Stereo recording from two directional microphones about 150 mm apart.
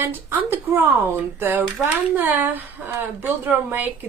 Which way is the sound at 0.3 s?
15° right (ahead or behind).